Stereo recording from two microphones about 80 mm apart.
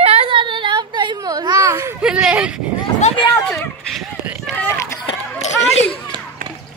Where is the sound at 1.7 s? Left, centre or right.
Right.